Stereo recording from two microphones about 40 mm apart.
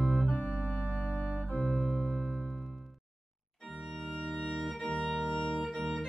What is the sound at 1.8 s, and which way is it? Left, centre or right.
Music, right.